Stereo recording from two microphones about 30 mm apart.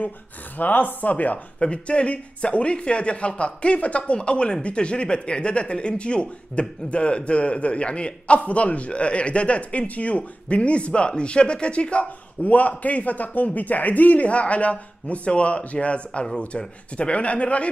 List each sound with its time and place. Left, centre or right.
0.6 s speech: left
1.6 s speech: left
4.1 s speech: left
8.5 s speech: left